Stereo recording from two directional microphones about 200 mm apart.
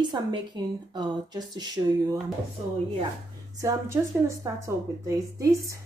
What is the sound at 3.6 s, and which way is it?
A woman's voice, 15° right (ahead or behind).